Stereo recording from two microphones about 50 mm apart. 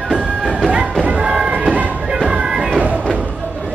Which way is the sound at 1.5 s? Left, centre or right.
Right.